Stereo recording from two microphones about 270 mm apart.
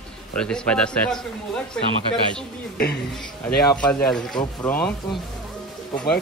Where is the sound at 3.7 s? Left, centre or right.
Centre.